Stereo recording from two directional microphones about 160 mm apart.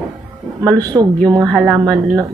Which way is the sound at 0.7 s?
25° right (ahead or behind).